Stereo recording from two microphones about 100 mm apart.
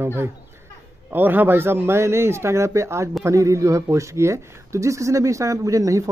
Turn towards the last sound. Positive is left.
turn(degrees=-35)  # may be behind; listen again after turning